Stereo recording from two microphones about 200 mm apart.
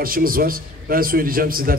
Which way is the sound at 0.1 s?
45° right (ahead or behind).